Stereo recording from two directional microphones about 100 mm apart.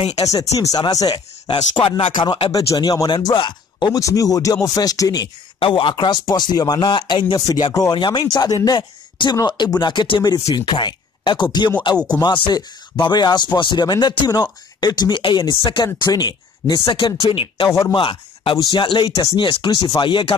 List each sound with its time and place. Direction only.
0.1 s speech: 35° left (ahead or behind); by 2.1 s 65° left (ahead or behind)
2.5 s speech: 40° left (ahead or behind)
3.3 s speech: 50° left (ahead or behind)
4.0 s speech: 35° left (ahead or behind)
5.6 s speech: 60° left (ahead or behind); by 7.9 s 40° left (ahead or behind)
7.9 s speech: 50° left (ahead or behind)
17.6 s speech: 35° left (ahead or behind)
17.9 s speech: 60° left (ahead or behind)